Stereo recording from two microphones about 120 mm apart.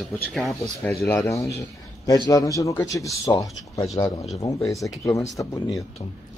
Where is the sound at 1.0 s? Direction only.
20° left (ahead or behind).